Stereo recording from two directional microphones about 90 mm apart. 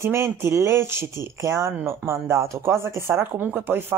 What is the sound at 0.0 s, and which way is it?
Speech, 30° right (ahead or behind).